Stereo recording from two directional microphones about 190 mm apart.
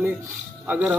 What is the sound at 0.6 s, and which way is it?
Speech, 10° right (ahead or behind).